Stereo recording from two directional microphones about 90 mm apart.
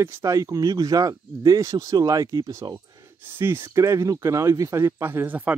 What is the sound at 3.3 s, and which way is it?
Speech, 25° right (ahead or behind).